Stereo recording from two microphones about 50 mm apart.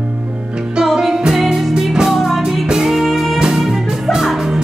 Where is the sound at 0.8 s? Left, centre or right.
Centre.